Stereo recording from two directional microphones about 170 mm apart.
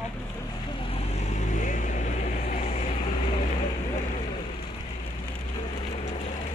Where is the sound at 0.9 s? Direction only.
40° left (ahead or behind).